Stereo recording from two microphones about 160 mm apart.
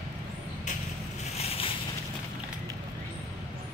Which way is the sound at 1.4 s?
40° left (ahead or behind).